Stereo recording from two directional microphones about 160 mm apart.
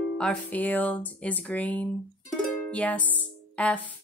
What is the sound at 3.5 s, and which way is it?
Speech, 10° left (ahead or behind).